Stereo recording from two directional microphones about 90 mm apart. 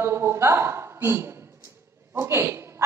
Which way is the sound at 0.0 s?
30° right (ahead or behind).